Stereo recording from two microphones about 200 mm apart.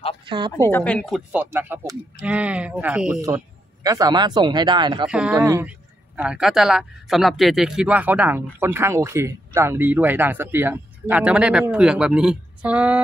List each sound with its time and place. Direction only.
0.6 s speech: 10° left (ahead or behind); by 3.2 s 5° right (ahead or behind)
3.2 s speech: 15° right (ahead or behind)
5.0 s speech: 5° right (ahead or behind)